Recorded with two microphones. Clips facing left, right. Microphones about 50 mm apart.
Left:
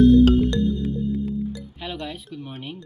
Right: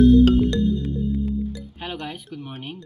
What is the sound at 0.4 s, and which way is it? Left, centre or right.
Music, centre.